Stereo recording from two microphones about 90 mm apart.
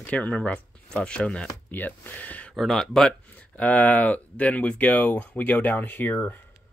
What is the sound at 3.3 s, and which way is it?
Speech, 15° left (ahead or behind).